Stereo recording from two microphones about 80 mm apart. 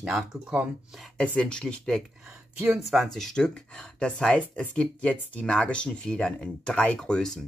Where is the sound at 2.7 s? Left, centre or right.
Centre.